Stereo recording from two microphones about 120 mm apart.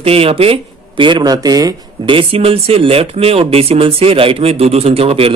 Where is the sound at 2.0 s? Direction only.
50° right (ahead or behind).